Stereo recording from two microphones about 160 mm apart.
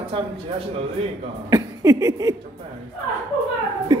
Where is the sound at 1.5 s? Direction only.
20° right (ahead or behind).